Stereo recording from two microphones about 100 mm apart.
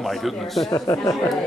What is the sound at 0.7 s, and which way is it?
Speech, 35° left (ahead or behind).